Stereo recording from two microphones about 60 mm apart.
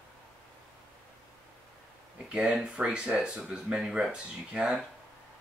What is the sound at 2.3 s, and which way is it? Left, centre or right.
Speech, centre.